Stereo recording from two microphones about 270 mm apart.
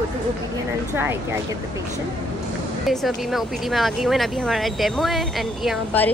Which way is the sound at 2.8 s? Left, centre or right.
Centre.